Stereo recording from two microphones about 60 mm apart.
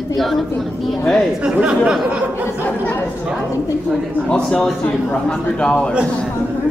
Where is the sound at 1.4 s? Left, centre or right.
Centre.